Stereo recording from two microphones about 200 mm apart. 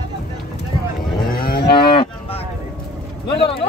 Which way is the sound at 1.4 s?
50° left (ahead or behind).